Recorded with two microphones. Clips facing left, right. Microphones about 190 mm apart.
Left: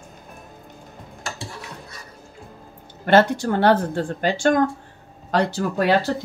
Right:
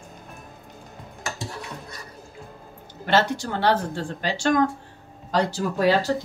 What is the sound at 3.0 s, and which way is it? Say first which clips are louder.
Speech: left 6 dB; 55° left (ahead or behind).